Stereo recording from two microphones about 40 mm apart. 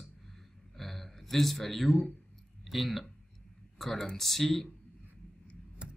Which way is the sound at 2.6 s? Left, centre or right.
Centre.